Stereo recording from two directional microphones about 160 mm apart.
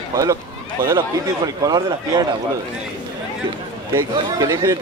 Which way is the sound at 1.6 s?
25° right (ahead or behind).